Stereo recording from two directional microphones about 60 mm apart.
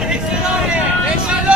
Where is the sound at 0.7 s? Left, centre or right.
Centre.